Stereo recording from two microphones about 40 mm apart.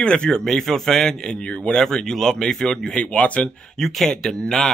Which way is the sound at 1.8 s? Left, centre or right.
Centre.